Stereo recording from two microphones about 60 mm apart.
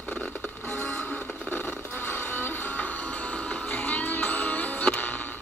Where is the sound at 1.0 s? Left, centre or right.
Left.